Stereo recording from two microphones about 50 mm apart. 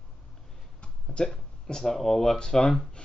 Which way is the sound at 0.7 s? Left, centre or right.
Centre.